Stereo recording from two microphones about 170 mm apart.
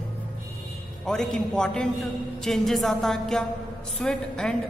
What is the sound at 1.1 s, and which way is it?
A man's voice, 5° left (ahead or behind).